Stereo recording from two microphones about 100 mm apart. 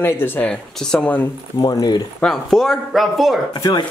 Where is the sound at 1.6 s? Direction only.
40° left (ahead or behind).